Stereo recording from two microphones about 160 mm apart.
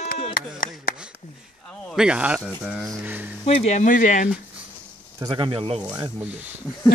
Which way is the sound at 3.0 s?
10° right (ahead or behind).